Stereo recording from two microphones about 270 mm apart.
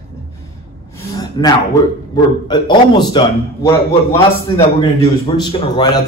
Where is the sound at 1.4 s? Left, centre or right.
Centre.